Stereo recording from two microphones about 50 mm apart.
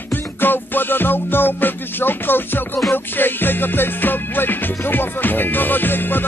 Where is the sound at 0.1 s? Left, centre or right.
Left.